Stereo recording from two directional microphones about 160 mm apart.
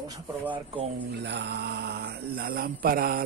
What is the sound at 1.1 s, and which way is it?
Speech, 90° right.